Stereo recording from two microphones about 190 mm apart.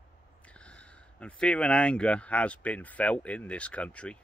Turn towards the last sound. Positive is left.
turn(degrees=5)  # may be behind; listen again after turning